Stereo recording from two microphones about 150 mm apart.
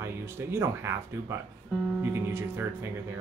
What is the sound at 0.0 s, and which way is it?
Speech, 15° right (ahead or behind).